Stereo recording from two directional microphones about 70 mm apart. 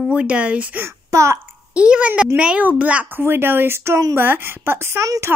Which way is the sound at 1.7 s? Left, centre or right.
Centre.